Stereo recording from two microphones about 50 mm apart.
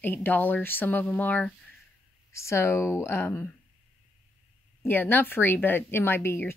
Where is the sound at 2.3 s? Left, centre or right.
Left.